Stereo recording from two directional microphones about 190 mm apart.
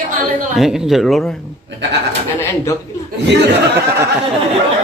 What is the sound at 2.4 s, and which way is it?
Speech, 15° left (ahead or behind).